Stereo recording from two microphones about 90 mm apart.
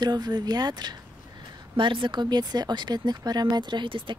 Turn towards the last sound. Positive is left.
turn(degrees=-70)  # may be behind; listen again after turning